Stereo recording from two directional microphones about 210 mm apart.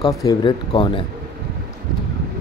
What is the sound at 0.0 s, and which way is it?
Speech, 15° left (ahead or behind).